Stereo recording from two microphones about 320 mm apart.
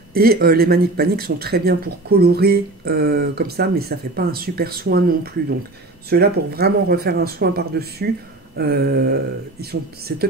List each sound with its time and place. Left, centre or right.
0.1 s speech: right